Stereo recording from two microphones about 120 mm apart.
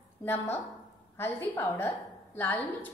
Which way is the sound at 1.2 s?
20° left (ahead or behind).